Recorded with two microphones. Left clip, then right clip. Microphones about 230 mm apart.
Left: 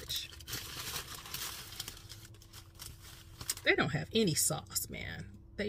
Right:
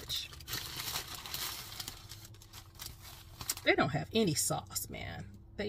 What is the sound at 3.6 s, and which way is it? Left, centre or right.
Speech, centre.